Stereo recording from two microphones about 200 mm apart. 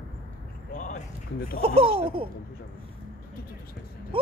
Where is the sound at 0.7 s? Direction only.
40° left (ahead or behind).